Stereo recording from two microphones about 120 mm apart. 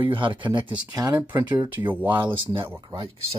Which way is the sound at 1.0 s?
15° right (ahead or behind).